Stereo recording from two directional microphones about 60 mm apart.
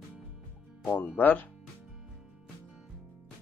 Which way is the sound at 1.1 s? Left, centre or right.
Left.